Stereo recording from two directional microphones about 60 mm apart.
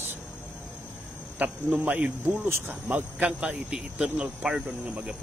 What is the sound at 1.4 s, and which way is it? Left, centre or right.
Speech, right.